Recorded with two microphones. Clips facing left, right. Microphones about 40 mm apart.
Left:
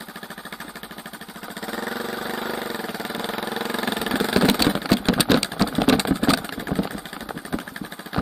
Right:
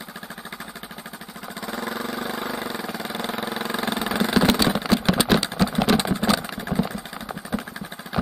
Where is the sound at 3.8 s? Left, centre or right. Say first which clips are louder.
Left 1 dB; left.